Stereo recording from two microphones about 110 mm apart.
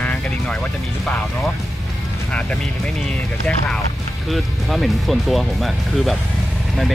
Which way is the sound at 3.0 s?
10° left (ahead or behind).